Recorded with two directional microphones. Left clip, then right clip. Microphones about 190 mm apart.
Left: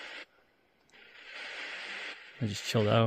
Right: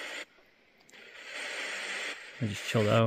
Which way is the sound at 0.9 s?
70° right (ahead or behind).